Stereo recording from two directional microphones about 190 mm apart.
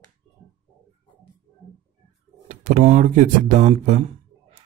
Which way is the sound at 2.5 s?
40° right (ahead or behind).